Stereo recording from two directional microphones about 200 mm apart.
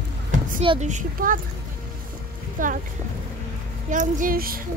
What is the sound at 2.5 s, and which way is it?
Speech, 40° right (ahead or behind).